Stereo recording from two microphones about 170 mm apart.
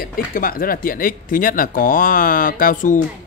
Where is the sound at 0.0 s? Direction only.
60° left (ahead or behind).